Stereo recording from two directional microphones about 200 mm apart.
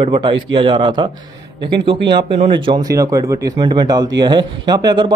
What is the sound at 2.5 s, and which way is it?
Speech, 25° right (ahead or behind).